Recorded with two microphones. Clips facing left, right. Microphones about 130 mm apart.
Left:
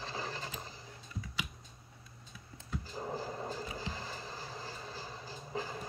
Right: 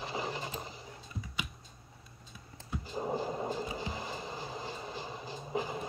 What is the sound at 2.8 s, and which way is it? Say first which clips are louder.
Skateboard: right 7 dB; 20° right (ahead or behind).